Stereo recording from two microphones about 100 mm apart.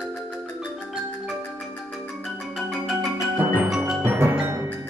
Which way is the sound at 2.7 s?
Centre (ahead or behind).